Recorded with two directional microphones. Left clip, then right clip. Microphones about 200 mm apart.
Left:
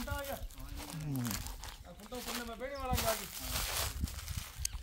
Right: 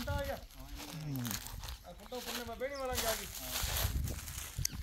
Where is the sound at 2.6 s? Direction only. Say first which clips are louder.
Right 3 dB; 55° left (ahead or behind).